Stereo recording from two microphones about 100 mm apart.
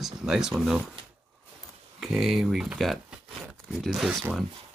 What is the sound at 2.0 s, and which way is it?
Speech, 5° right (ahead or behind).